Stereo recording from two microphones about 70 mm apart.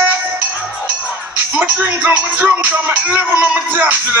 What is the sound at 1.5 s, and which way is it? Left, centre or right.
Speech, right.